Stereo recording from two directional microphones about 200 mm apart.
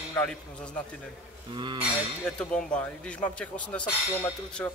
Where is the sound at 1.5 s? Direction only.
25° right (ahead or behind).